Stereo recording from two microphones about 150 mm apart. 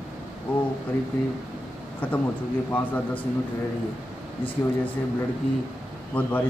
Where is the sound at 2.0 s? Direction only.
10° left (ahead or behind).